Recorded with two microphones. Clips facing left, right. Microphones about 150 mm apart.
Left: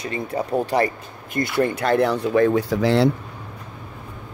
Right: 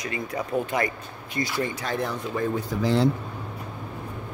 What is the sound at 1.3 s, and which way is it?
Speech, 55° left (ahead or behind).